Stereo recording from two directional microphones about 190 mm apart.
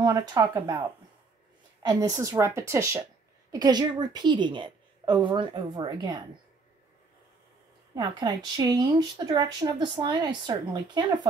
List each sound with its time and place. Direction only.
0.1 s a woman's voice: 20° right (ahead or behind)
7.9 s speech: 20° right (ahead or behind)